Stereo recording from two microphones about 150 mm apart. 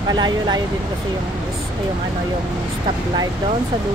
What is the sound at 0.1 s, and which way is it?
Speech, 30° right (ahead or behind).